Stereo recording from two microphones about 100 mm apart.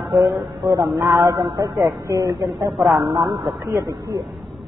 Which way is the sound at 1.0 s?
40° right (ahead or behind).